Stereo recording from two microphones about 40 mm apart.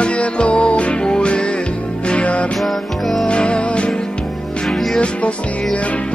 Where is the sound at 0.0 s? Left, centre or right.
Left.